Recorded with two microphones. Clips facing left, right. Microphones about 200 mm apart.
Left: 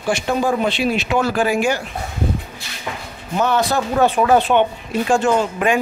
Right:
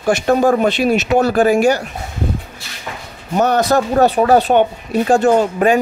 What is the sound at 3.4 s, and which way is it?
Speech, 45° right (ahead or behind).